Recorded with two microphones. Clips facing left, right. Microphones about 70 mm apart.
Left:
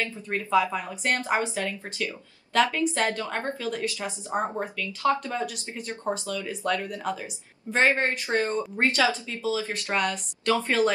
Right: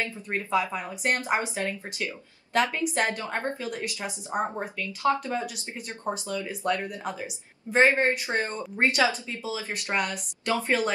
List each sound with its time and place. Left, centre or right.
0.0 s a woman's voice: right
6.2 s a woman's voice: right